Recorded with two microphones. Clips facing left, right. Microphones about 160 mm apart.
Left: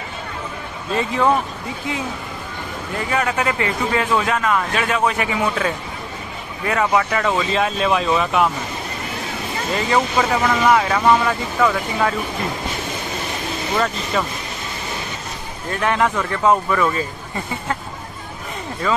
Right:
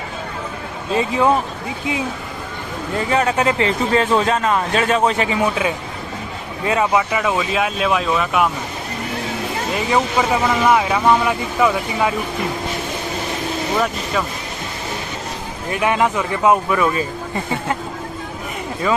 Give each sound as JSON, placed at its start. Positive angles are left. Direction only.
{"t": 0.9, "sound": "speech", "side_deg": -15}
{"t": 3.1, "sound": "speech", "side_deg": -25}
{"t": 6.6, "sound": "speech", "side_deg": -20}
{"t": 9.8, "sound": "speech", "side_deg": -10}
{"t": 15.7, "sound": "speech", "side_deg": -10}
{"t": 18.8, "sound": "speech", "side_deg": -10}